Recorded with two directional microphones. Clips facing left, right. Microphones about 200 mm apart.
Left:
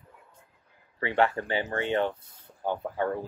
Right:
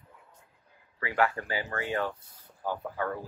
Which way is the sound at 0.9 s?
25° left (ahead or behind).